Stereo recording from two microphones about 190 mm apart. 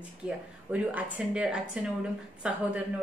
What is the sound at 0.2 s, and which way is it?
A woman's voice, 5° right (ahead or behind).